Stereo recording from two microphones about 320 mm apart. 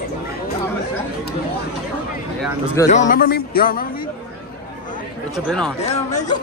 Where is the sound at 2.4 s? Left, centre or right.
Centre.